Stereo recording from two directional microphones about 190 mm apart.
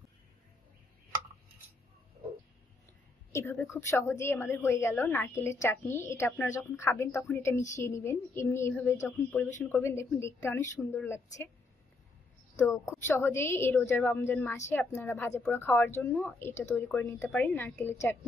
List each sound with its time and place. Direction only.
3.3 s a woman's voice: 15° left (ahead or behind)
12.9 s a woman's voice: 10° left (ahead or behind)